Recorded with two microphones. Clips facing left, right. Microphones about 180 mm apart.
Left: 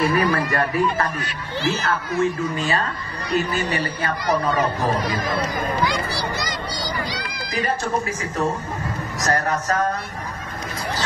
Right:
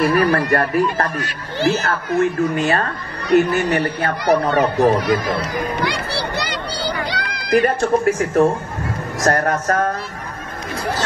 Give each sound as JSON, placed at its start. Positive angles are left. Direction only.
{"t": 0.1, "sound": "speech", "side_deg": -60}
{"t": 5.8, "sound": "run", "side_deg": -65}
{"t": 9.2, "sound": "speech", "side_deg": -50}